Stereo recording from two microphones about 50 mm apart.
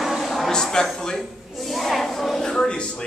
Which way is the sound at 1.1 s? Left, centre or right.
Centre.